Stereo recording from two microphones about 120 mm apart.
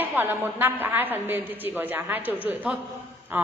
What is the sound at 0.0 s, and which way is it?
A woman's voice, 15° right (ahead or behind).